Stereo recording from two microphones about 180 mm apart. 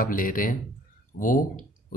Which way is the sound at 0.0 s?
50° left (ahead or behind).